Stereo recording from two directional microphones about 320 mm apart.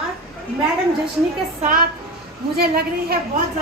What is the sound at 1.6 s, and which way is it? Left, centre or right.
A woman's voice, right.